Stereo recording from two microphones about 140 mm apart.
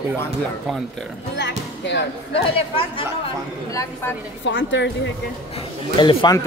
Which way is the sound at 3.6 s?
25° left (ahead or behind).